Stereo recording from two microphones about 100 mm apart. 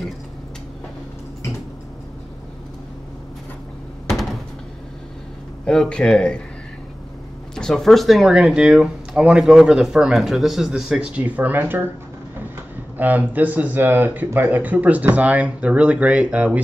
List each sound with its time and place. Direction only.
4.1 s door: centre (ahead or behind)
5.7 s speech: 5° left (ahead or behind)
7.5 s speech: 5° left (ahead or behind); by 11.9 s 20° right (ahead or behind)
12.9 s speech: 15° right (ahead or behind)